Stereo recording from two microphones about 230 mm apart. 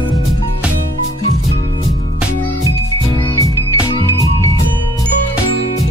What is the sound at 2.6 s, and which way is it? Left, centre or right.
Music, centre.